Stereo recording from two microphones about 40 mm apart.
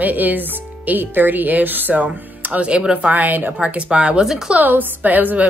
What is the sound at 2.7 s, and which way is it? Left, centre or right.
Speech, right.